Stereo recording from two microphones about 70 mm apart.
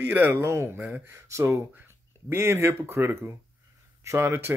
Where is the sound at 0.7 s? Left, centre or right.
Right.